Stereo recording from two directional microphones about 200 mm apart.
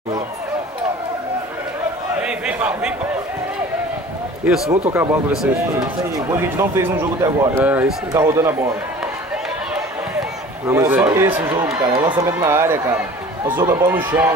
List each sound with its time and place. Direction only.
2.2 s a sound: 5° right (ahead or behind)
4.6 s speech: 30° right (ahead or behind)
5.8 s speech: 15° right (ahead or behind)
10.7 s speech: 10° right (ahead or behind)